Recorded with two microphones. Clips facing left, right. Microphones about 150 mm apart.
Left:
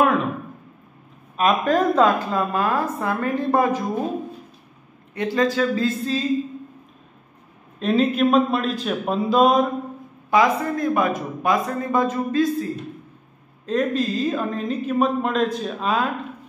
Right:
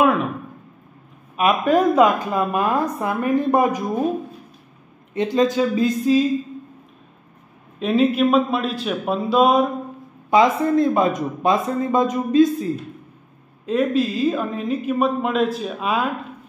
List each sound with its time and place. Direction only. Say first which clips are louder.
1.3 s a woman's voice: right 2 dB; 10° right (ahead or behind)
5.1 s speech: right 3 dB; 20° right (ahead or behind)
7.8 s speech: right 1 dB; 5° right (ahead or behind)
10.3 s speech: right 3 dB; 20° right (ahead or behind)
13.7 s speech: right 2 dB; 5° right (ahead or behind)